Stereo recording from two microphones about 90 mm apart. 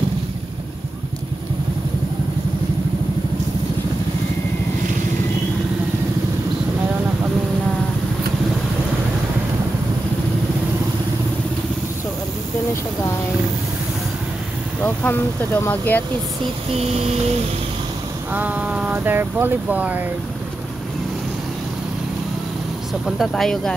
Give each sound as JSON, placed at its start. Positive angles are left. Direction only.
{"t": 14.8, "sound": "speech", "side_deg": 25}
{"t": 18.3, "sound": "speech", "side_deg": -20}
{"t": 23.0, "sound": "speech", "side_deg": 0}